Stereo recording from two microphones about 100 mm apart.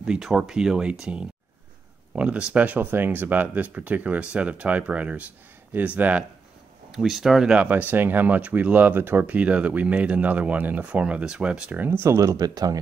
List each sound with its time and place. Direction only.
0.0 s speech: 5° right (ahead or behind)
6.9 s speech: 5° right (ahead or behind)
7.6 s speech: 15° right (ahead or behind)
12.4 s speech: 40° right (ahead or behind)